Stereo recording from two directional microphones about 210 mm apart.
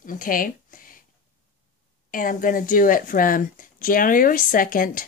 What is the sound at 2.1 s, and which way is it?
A woman's voice, 40° left (ahead or behind).